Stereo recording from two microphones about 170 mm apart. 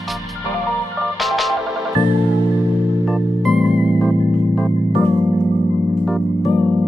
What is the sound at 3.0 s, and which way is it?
Music, centre (ahead or behind).